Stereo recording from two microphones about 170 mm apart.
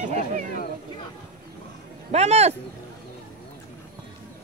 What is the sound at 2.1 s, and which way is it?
Speech, 40° right (ahead or behind).